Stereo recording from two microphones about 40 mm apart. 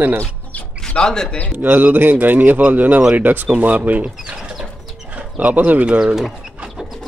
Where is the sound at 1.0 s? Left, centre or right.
Centre.